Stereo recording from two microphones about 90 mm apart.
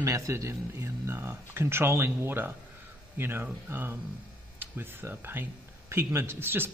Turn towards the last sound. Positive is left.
turn(degrees=-25)  # may be behind; listen again after turning